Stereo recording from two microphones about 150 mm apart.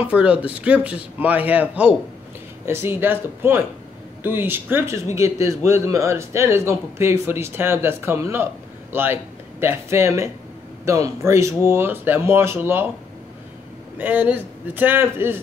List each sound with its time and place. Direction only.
0.0 s speech: 10° right (ahead or behind)
13.9 s speech: 10° right (ahead or behind)